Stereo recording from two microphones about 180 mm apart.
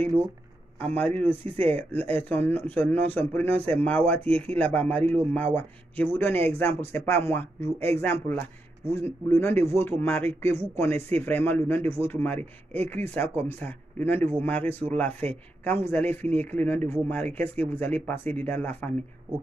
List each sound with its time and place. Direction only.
0.9 s speech: 10° left (ahead or behind)